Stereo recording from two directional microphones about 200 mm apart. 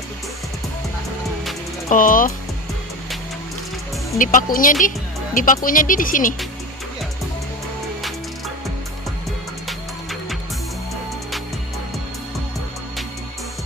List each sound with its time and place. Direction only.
1.9 s speech: 40° left (ahead or behind)
4.2 s speech: 40° left (ahead or behind)